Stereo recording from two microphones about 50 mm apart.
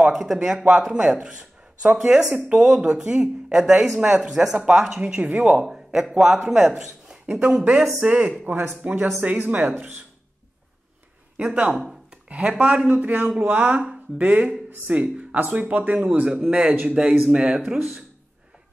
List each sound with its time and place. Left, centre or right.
0.1 s speech: centre
4.3 s speech: centre
4.6 s a man's voice: right
6.8 s a sound: centre
7.5 s speech: centre
8.5 s speech: right
8.8 s speech: right
11.3 s speech: right
11.7 s speech: centre
12.1 s speech: right